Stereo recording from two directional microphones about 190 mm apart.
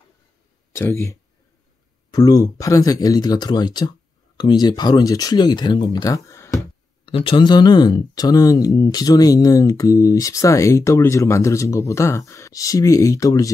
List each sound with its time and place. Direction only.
0.7 s speech: 15° left (ahead or behind)
7.1 s speech: 30° left (ahead or behind)